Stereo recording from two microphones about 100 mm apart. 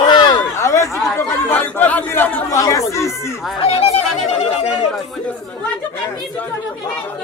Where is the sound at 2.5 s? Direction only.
30° left (ahead or behind).